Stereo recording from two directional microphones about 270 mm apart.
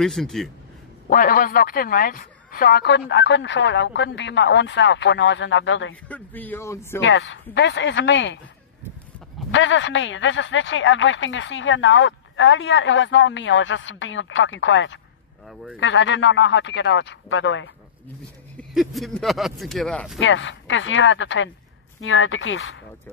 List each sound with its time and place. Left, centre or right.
0.0 s speech: centre
1.0 s speech: left
6.0 s speech: centre
7.0 s speech: left
9.5 s speech: left
18.6 s speech: centre
20.2 s speech: left